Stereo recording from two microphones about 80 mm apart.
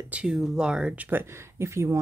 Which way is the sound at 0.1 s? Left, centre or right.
Centre.